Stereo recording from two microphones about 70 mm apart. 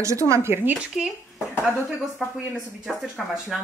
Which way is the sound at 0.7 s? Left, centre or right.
Centre.